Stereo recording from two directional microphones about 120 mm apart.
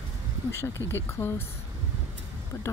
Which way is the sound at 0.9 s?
20° left (ahead or behind).